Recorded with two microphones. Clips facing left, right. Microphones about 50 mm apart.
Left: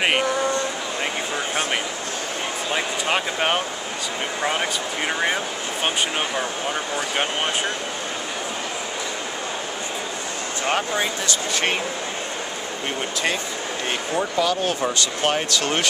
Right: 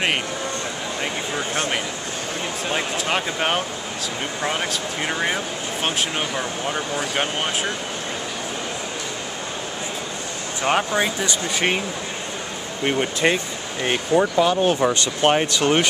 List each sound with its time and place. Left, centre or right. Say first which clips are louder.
1.5 s speech: even; centre
10.6 s speech: right 3 dB; centre
12.8 s speech: right 6 dB; centre